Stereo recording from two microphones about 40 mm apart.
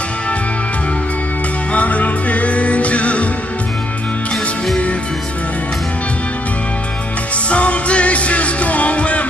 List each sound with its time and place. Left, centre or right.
1.7 s music: left
7.4 s music: left